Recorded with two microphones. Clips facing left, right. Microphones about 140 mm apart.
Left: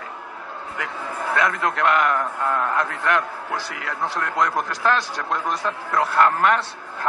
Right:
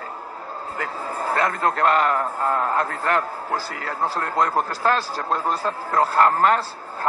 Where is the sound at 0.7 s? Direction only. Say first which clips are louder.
Right 1 dB; 35° right (ahead or behind).